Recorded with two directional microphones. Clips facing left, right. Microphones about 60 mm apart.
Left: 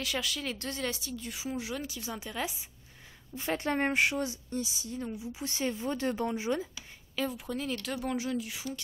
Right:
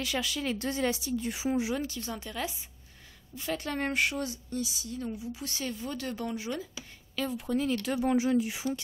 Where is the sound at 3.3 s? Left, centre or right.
Left.